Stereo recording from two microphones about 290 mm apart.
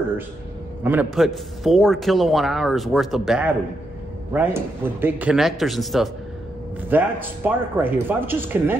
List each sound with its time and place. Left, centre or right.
0.8 s a man's voice: centre